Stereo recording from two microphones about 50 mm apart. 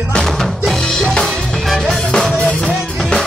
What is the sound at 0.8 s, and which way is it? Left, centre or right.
Music, centre.